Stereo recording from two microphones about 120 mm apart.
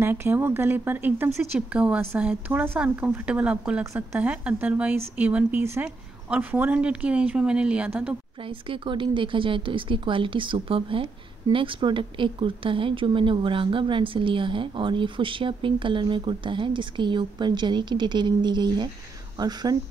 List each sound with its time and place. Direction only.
0.0 s speech: 20° right (ahead or behind)
1.7 s speech: 10° right (ahead or behind)
8.5 s speech: 45° right (ahead or behind)